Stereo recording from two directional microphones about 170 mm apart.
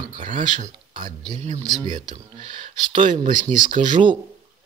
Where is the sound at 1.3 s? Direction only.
40° right (ahead or behind).